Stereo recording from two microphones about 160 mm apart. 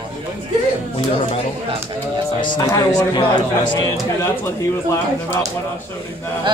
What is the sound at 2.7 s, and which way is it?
A man's voice, 25° left (ahead or behind).